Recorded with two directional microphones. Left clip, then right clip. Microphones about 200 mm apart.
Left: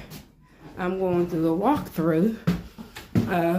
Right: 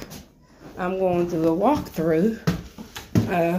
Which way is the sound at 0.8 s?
10° left (ahead or behind).